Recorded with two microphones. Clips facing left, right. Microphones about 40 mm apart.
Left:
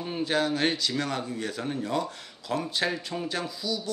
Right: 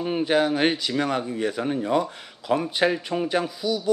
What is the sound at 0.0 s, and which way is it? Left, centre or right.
Speech, right.